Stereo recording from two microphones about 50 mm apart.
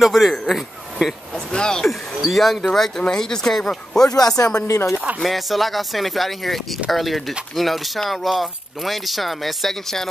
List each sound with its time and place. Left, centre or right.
0.0 s speech: centre
1.5 s speech: centre
1.9 s speech: centre
4.6 s speech: left
5.2 s speech: centre